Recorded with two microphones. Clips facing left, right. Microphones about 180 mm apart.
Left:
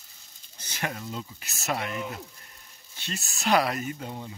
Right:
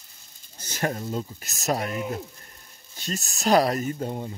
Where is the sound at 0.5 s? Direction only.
40° right (ahead or behind).